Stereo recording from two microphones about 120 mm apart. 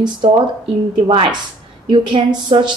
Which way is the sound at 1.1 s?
45° right (ahead or behind).